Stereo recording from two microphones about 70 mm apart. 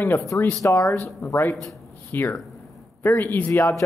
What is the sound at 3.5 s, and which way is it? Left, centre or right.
Speech, left.